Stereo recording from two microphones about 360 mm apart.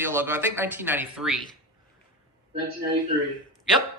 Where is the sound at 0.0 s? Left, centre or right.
Centre.